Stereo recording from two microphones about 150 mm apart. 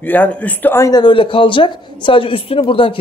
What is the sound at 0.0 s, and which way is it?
Speech, 10° left (ahead or behind).